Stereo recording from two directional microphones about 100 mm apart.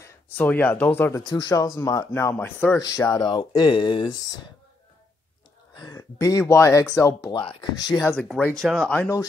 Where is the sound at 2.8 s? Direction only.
35° left (ahead or behind); by 4.1 s 55° left (ahead or behind).